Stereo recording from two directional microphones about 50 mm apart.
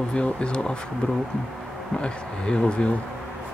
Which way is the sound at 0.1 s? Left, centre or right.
Centre.